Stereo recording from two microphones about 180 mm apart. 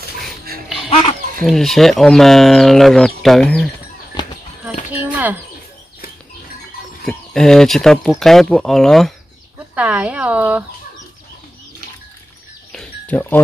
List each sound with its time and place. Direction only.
0.8 s a sound: 35° left (ahead or behind)
1.4 s speech: centre (ahead or behind)
4.2 s a sound: 25° left (ahead or behind)
4.9 s speech: 10° right (ahead or behind)
7.1 s speech: 5° left (ahead or behind)
12.7 s music: 10° left (ahead or behind)